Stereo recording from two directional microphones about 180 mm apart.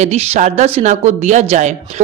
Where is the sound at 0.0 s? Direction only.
35° right (ahead or behind).